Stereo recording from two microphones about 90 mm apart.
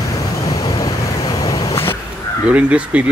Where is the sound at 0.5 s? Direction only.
45° left (ahead or behind).